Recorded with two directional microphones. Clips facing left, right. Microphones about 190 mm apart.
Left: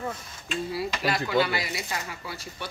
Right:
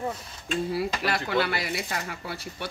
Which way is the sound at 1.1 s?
55° right (ahead or behind).